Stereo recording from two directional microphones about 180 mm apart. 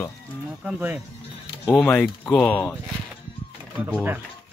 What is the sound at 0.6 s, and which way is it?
Speech, 10° right (ahead or behind).